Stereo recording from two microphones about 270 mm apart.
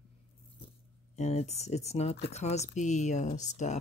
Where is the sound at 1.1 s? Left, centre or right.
Left.